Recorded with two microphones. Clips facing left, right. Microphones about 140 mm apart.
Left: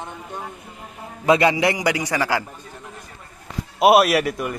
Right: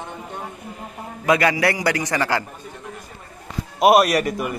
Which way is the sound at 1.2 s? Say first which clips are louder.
Left 1 dB; 25° left (ahead or behind).